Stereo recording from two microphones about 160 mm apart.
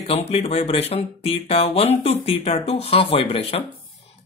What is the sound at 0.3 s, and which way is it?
Speech, 35° left (ahead or behind).